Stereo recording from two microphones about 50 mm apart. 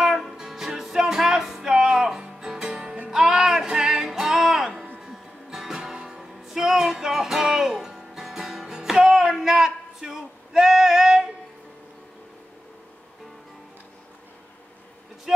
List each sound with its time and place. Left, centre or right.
0.0 s music: centre
15.3 s vehicle: centre